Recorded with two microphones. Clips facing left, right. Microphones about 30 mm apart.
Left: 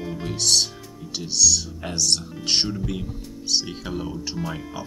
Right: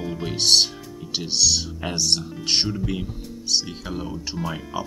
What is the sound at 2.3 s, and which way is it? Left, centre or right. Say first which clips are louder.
Speech: even; centre.